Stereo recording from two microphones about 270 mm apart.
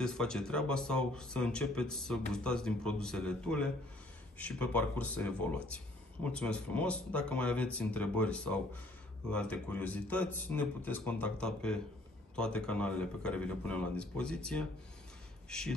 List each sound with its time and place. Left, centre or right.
0.0 s speech: centre